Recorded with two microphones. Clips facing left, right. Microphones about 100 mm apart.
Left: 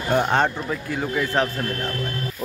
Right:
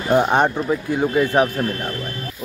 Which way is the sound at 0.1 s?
15° right (ahead or behind).